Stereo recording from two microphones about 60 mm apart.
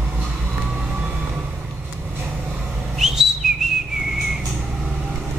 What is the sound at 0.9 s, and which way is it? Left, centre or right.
Vehicle, right.